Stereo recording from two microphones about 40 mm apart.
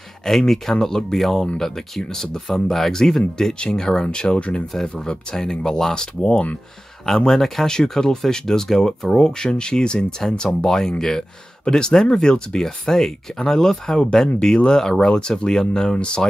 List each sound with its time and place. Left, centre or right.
0.2 s speech: centre; by 4.6 s left
4.7 s speech: centre
7.3 s speech: centre